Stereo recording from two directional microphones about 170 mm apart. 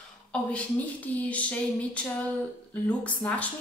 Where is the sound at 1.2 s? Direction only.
10° left (ahead or behind).